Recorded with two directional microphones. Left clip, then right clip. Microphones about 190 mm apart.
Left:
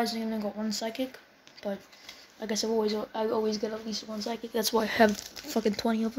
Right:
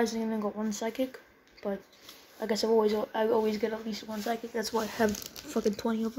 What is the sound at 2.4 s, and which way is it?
Speech, 15° left (ahead or behind).